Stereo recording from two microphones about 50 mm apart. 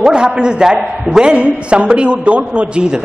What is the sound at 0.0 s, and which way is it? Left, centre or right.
A man's voice, centre.